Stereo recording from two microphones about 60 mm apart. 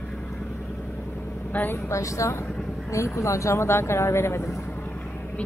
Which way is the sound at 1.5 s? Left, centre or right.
Left.